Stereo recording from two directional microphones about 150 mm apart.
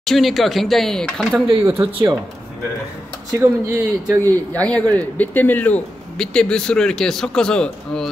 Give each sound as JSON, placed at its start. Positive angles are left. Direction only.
{"t": 0.0, "sound": "speech", "side_deg": 0}
{"t": 1.6, "sound": "speech", "side_deg": -15}
{"t": 1.9, "sound": "speech", "side_deg": -35}
{"t": 3.3, "sound": "speech", "side_deg": -15}
{"t": 4.2, "sound": "speech", "side_deg": 10}